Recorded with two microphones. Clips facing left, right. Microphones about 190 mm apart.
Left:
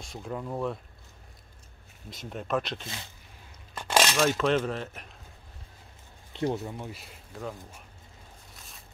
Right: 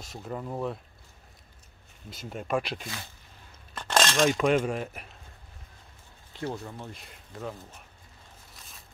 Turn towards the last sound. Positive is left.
turn(degrees=0)  # may be behind; listen again after turning